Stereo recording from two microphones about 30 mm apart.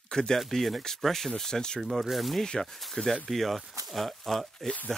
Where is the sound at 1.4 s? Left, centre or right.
Left.